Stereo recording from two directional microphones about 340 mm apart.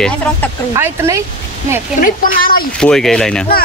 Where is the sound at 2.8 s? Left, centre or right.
Centre.